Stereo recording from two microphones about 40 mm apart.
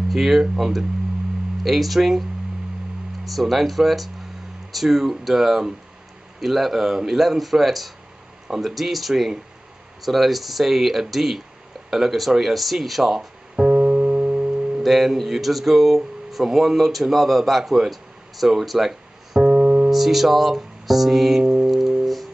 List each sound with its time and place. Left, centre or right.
0.1 s a man's voice: centre
3.3 s a man's voice: centre
13.6 s music: right
14.8 s a man's voice: centre
19.4 s piano: right
19.9 s a man's voice: centre
21.6 s music: centre